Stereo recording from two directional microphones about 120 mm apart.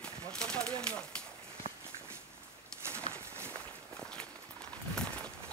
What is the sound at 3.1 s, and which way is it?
Walk, 20° right (ahead or behind).